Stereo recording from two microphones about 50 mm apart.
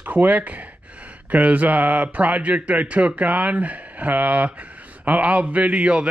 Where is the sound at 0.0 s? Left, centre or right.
Right.